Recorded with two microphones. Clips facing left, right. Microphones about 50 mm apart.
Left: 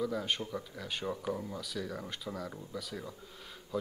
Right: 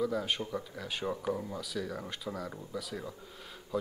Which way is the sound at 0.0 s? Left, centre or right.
Centre.